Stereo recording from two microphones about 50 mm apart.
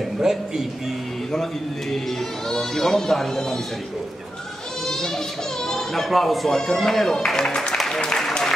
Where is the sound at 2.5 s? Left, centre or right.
Centre.